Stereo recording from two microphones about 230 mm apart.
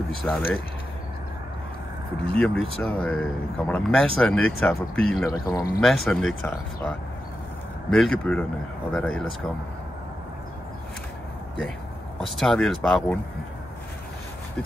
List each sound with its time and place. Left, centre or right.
0.2 s speech: centre
2.3 s speech: centre
5.2 s speech: centre
5.8 s speech: centre
7.9 s speech: centre
12.2 s speech: centre